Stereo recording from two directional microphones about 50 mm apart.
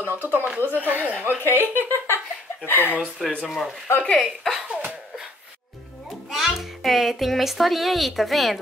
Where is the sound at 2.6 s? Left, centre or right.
Left.